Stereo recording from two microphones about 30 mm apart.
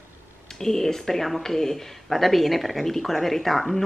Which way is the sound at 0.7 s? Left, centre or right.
Centre.